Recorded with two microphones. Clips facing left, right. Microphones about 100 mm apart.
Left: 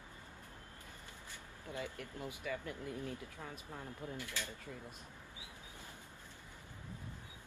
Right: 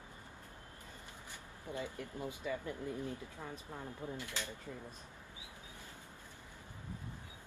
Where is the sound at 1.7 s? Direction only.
20° right (ahead or behind).